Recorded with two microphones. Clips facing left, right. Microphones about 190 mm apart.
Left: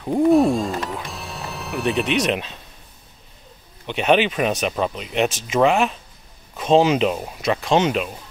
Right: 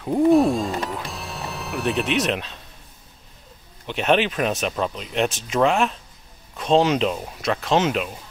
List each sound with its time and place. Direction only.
0.0 s speech: centre (ahead or behind)
3.8 s speech: centre (ahead or behind)